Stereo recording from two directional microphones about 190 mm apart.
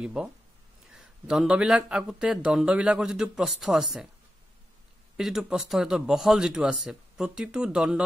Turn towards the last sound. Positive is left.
turn(degrees=-5)  # may be behind; listen again after turning